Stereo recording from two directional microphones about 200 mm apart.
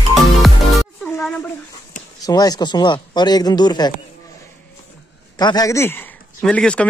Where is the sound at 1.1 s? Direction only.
10° left (ahead or behind).